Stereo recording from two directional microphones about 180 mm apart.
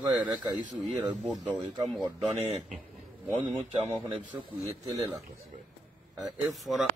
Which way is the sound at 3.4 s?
35° right (ahead or behind).